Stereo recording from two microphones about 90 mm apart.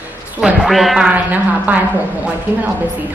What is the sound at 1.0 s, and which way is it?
Speech, 15° right (ahead or behind).